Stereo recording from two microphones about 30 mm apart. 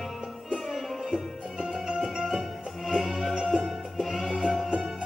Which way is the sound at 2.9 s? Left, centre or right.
Centre.